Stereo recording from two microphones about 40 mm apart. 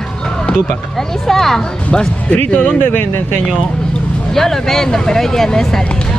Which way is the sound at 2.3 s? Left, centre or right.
Left.